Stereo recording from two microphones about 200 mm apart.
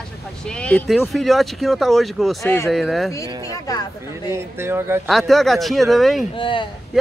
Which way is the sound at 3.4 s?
15° left (ahead or behind).